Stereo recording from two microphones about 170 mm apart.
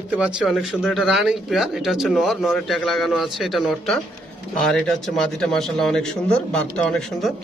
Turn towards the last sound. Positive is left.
turn(degrees=5)  # may be behind; listen again after turning